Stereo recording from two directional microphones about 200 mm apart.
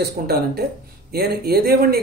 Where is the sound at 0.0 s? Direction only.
55° right (ahead or behind).